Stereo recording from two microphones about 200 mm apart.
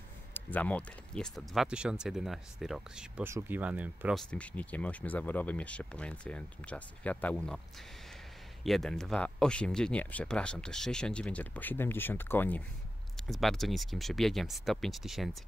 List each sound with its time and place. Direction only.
0.3 s speech: 10° left (ahead or behind); by 4.2 s 10° right (ahead or behind)
4.3 s speech: 5° left (ahead or behind)
8.6 s speech: centre (ahead or behind)